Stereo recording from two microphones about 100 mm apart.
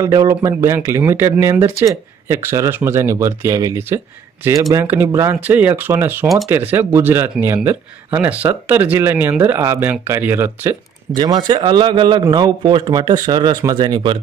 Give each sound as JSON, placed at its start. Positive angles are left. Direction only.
{"t": 0.0, "sound": "speech", "side_deg": -35}
{"t": 5.4, "sound": "speech", "side_deg": -20}
{"t": 11.1, "sound": "a man's voice", "side_deg": -45}